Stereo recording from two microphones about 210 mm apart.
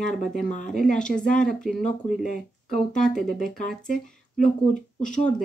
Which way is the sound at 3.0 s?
Centre (ahead or behind).